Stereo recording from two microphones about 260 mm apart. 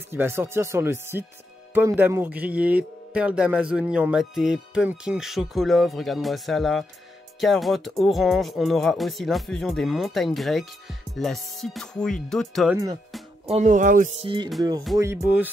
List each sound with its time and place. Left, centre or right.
0.1 s speech: centre
13.5 s speech: right
15.0 s speech: centre